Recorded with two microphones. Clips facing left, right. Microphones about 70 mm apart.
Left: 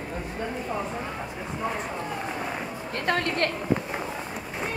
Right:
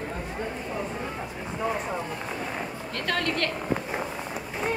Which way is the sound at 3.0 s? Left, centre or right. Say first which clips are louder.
Left 2 dB; left.